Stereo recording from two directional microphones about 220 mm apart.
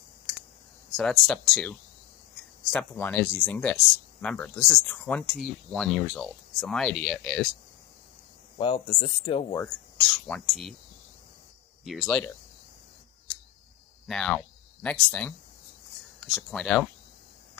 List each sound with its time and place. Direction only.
0.9 s speech: centre (ahead or behind)
8.5 s speech: 25° left (ahead or behind)
9.6 s speech: 5° left (ahead or behind)
11.8 s speech: centre (ahead or behind)
14.0 s speech: centre (ahead or behind)